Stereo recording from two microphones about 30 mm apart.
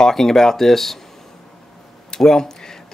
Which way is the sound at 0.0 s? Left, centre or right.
Centre.